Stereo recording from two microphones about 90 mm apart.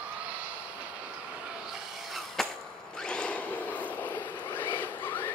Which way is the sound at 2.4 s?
5° left (ahead or behind).